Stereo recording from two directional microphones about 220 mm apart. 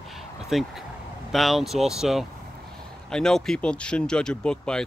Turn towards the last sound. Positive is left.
turn(degrees=5)  # may be behind; listen again after turning